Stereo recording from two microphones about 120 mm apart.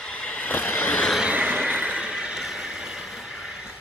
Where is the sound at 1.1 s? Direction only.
10° right (ahead or behind).